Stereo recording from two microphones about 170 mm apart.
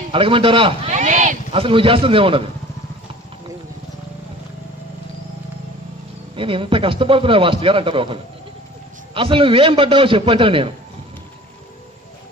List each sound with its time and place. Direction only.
0.1 s a man's voice: 30° right (ahead or behind)
0.9 s a sound: 45° right (ahead or behind)
1.5 s a man's voice: 30° right (ahead or behind)
6.3 s a man's voice: 30° right (ahead or behind)